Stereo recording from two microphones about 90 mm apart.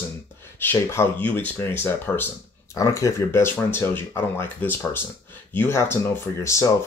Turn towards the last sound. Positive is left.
turn(degrees=30)  # may be behind; listen again after turning